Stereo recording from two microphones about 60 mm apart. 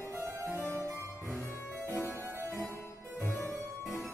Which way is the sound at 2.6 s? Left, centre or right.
Left.